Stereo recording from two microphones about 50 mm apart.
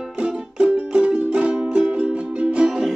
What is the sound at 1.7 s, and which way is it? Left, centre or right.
Music, centre.